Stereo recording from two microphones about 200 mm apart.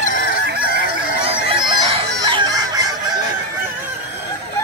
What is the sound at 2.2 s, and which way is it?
Fowl, 20° right (ahead or behind).